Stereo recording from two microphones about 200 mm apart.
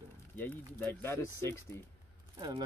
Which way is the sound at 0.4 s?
10° left (ahead or behind).